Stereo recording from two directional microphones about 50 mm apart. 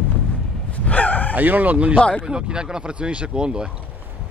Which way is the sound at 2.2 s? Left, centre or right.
Centre.